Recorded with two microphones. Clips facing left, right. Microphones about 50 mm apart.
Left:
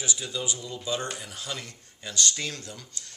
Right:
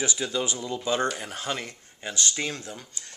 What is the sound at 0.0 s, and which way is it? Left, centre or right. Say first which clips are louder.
Speech: right 5 dB; right.